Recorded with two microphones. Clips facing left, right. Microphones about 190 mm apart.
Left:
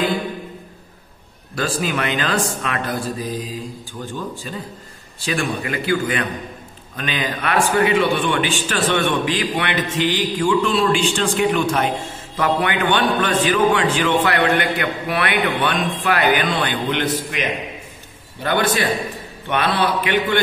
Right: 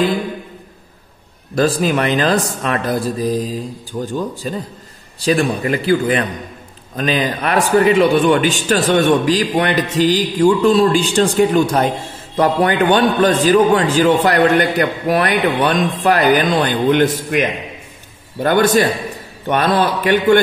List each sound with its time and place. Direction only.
1.5 s a man's voice: 40° right (ahead or behind)
3.9 s a man's voice: 50° right (ahead or behind)
4.4 s a man's voice: 40° right (ahead or behind)